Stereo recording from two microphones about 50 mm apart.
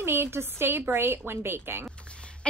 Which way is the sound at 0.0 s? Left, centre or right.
Right.